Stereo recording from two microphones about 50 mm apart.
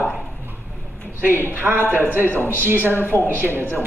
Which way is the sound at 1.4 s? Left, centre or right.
Right.